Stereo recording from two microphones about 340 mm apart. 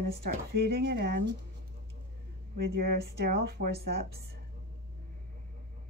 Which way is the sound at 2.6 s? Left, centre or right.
Right.